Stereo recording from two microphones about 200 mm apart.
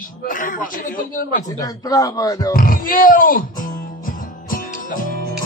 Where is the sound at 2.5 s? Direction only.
45° left (ahead or behind).